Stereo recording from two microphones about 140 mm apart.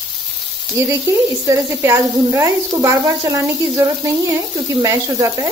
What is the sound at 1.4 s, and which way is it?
Speech, 20° right (ahead or behind).